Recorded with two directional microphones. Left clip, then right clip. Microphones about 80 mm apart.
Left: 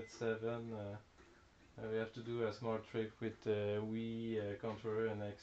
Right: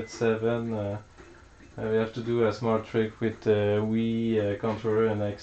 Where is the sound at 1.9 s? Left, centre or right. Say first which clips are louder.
Right 15 dB; left.